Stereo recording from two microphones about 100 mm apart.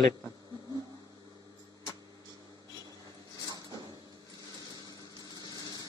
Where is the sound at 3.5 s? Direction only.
40° right (ahead or behind).